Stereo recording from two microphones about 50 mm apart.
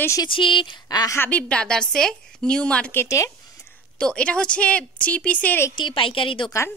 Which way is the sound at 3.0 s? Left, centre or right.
Left.